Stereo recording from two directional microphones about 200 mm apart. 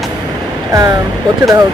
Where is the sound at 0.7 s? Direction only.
15° right (ahead or behind).